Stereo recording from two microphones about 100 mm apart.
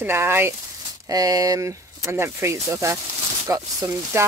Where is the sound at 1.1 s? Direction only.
35° right (ahead or behind).